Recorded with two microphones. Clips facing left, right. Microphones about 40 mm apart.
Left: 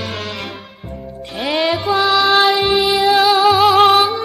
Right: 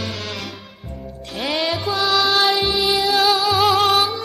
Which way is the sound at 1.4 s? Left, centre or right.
Centre.